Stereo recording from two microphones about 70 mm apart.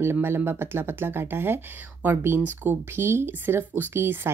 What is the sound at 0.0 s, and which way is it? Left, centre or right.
Speech, right.